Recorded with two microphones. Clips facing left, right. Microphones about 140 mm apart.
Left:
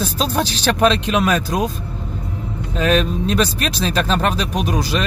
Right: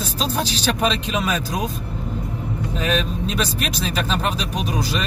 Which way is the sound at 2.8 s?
75° left (ahead or behind).